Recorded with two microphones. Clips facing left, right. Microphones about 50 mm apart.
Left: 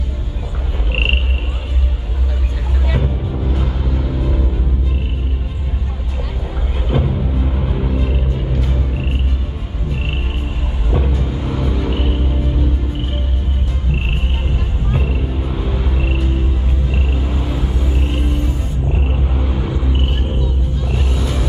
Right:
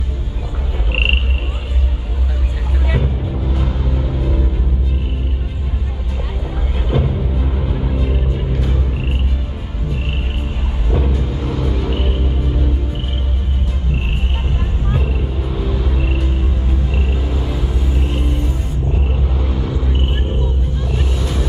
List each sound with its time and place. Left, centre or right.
0.9 s frog: centre
2.9 s music: centre
6.9 s music: centre
10.9 s music: centre
14.9 s vehicle: centre
15.9 s music: centre
16.9 s rumble: centre
18.9 s rumble: centre
21.0 s vehicle: centre